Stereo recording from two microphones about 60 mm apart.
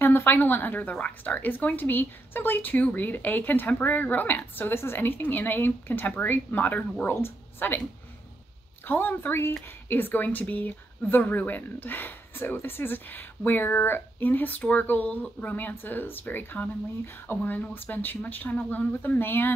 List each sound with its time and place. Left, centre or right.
0.0 s speech: left
8.8 s speech: left